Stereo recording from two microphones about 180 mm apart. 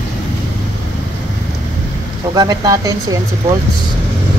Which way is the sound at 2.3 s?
20° right (ahead or behind).